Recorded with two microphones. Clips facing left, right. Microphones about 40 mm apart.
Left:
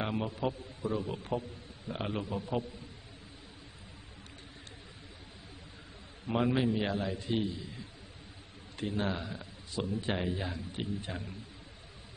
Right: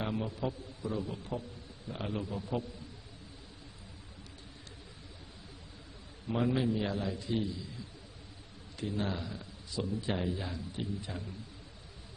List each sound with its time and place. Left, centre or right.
0.0 s a man's voice: left
6.4 s a man's voice: left